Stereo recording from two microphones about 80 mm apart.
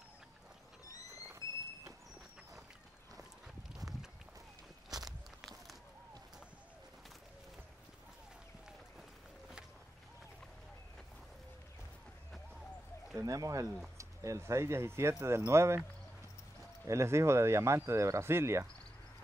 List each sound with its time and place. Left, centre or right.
0.8 s vehicle: left
13.1 s speech: right
16.8 s speech: right